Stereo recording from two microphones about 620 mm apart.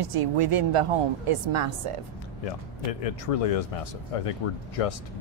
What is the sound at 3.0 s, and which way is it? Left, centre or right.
Speech, left.